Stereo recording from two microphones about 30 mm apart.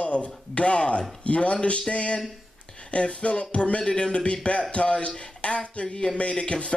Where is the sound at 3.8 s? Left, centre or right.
Left.